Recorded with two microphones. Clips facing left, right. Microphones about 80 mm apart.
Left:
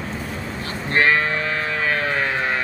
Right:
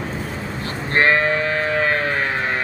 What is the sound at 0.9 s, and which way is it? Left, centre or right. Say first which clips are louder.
Sheep: right 2 dB; right.